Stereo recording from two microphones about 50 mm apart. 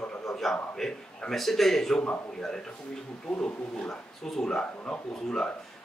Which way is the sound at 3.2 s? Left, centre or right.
Left.